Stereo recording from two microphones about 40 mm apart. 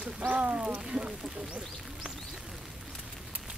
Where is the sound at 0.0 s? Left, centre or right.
Right.